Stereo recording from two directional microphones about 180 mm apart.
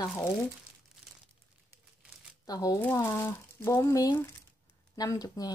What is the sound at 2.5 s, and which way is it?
Speech, 20° left (ahead or behind).